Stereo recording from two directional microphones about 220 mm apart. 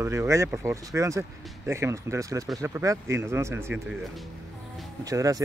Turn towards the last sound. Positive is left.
turn(degrees=-15)  # may be behind; listen again after turning